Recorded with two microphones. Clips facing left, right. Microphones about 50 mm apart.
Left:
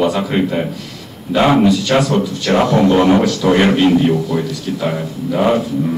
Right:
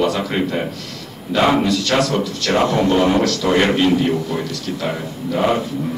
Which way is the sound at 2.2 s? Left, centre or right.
Left.